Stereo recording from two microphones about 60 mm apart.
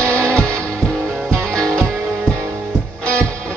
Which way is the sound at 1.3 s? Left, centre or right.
Centre.